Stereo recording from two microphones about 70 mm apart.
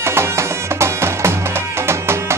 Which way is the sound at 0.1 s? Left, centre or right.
Right.